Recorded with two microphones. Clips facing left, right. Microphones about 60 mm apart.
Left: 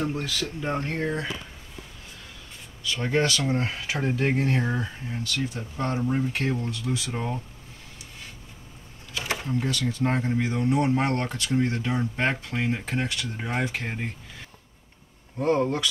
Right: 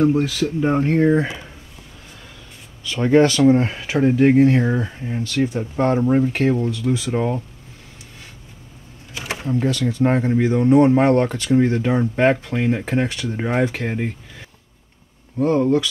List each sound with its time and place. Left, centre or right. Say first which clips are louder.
0.1 s speech: right 11 dB; centre
2.8 s speech: right 10 dB; right; by 4.9 s centre
5.0 s speech: right 9 dB; right
9.1 s drawer open or close: right 4 dB; right
9.6 s speech: right 10 dB; right
15.3 s speech: right 5 dB; centre